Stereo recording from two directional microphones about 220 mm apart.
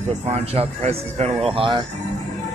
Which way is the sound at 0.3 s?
25° right (ahead or behind).